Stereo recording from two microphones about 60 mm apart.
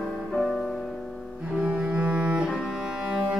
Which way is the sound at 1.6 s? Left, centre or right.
Centre.